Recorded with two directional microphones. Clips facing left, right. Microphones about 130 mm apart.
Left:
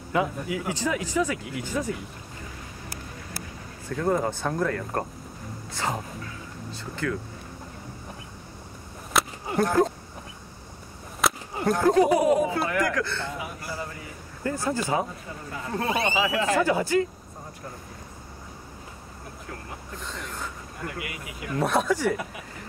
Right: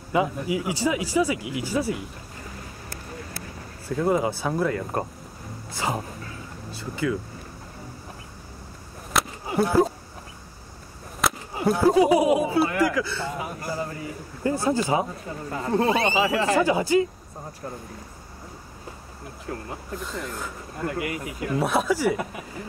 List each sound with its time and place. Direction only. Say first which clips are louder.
0.1 s speech: right 3 dB; 15° right (ahead or behind)
3.9 s speech: right 2 dB; 10° right (ahead or behind)
9.1 s a sound: right 1 dB; 5° right (ahead or behind)
11.1 s speech: even; centre (ahead or behind)
13.4 s a sound: right 4 dB; 40° right (ahead or behind)
14.4 s speech: right 4 dB; 15° right (ahead or behind)
15.5 s speech: right 7 dB; 40° right (ahead or behind)
15.8 s speech: right 2 dB; 25° right (ahead or behind)
16.5 s speech: right 2 dB; 10° right (ahead or behind)
20.0 s speech: right 2 dB; 5° right (ahead or behind)
20.8 s speech: right 7 dB; 40° right (ahead or behind)
21.5 s speech: even; 5° right (ahead or behind)